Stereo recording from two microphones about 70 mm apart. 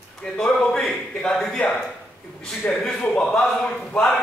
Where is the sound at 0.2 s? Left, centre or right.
Centre.